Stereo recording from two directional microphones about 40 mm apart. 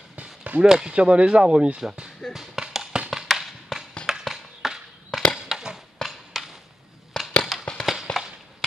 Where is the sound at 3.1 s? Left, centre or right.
Centre.